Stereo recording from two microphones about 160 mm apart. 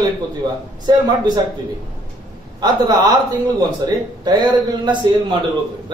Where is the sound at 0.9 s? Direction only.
25° right (ahead or behind).